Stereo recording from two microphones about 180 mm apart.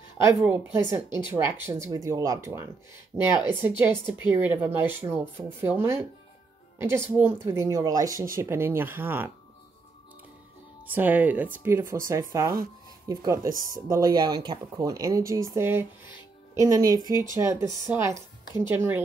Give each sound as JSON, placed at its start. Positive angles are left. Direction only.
{"t": 0.2, "sound": "speech", "side_deg": -10}
{"t": 11.0, "sound": "speech", "side_deg": -10}